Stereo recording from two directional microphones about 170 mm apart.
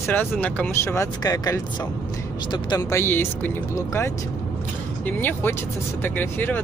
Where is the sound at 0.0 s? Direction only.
10° left (ahead or behind).